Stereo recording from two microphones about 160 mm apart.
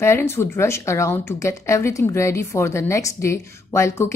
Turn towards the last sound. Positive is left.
turn(degrees=15)  # may be behind; listen again after turning